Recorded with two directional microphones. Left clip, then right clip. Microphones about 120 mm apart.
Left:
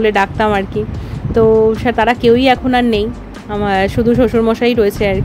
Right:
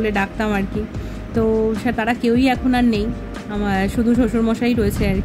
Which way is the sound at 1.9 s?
20° left (ahead or behind).